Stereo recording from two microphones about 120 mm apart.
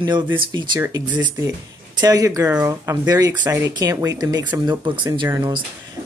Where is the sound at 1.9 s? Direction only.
30° right (ahead or behind).